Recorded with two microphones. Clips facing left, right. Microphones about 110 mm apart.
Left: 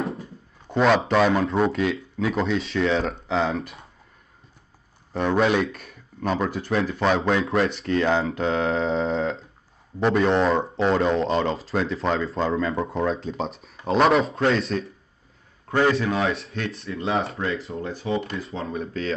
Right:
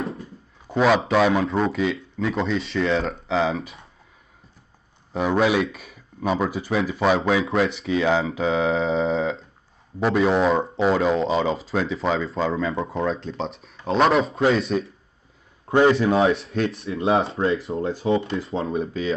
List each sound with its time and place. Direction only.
0.7 s speech: centre (ahead or behind)
5.1 s speech: 5° right (ahead or behind)
16.0 s speech: 30° right (ahead or behind)
16.3 s speech: centre (ahead or behind)
17.1 s speech: 30° right (ahead or behind)
18.8 s speech: 10° right (ahead or behind)